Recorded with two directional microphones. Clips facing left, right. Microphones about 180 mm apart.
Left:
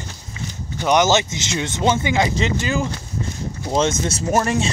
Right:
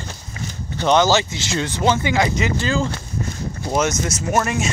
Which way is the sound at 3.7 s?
25° left (ahead or behind).